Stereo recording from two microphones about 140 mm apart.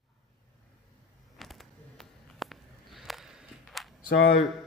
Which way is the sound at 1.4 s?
Centre (ahead or behind).